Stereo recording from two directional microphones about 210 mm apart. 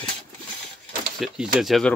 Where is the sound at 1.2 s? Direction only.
5° right (ahead or behind).